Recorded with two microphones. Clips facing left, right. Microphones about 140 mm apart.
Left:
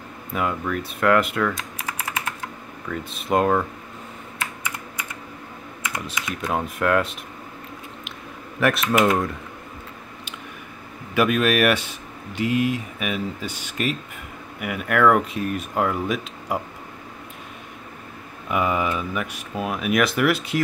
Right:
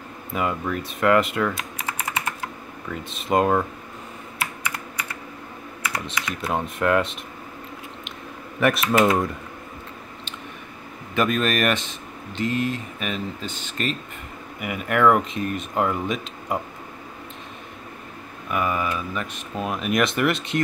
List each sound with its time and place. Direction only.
0.3 s speech: centre (ahead or behind)
1.8 s typing: 5° left (ahead or behind)
2.9 s speech: centre (ahead or behind)
4.6 s computer keyboard: 20° left (ahead or behind)
6.3 s speech: 5° left (ahead or behind)
8.5 s speech: centre (ahead or behind)
11.1 s speech: 5° left (ahead or behind)
14.6 s speech: centre (ahead or behind)
18.5 s speech: 20° left (ahead or behind)
19.1 s speech: 5° left (ahead or behind)